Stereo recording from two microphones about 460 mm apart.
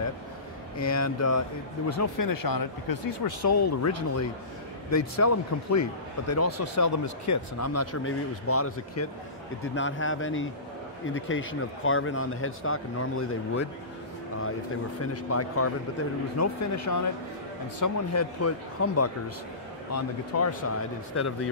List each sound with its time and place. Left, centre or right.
0.7 s speech: left
15.2 s speech: left